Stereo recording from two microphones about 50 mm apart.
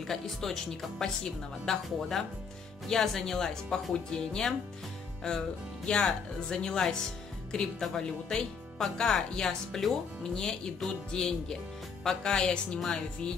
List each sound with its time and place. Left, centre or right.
0.0 s speech: centre